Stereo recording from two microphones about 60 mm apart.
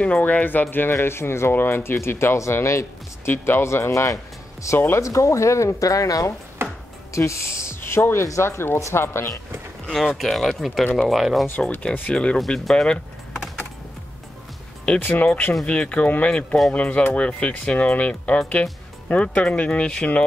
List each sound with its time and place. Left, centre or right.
0.0 s speech: left
0.9 s speech: left
3.3 s speech: left
4.7 s speech: left
5.0 s speech: left
6.6 s chopping: right
7.1 s speech: left
7.8 s speech: left
9.8 s speech: centre
12.1 s speech: centre
12.4 s speech: centre
15.0 s speech: left